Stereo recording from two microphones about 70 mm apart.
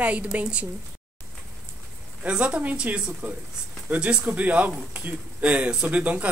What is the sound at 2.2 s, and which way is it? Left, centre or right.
A woman's voice, centre.